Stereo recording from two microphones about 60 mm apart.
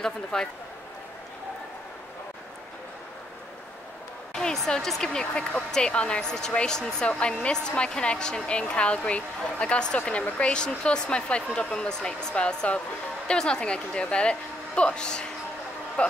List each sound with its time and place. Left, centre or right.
0.0 s speech: centre
4.3 s speech: centre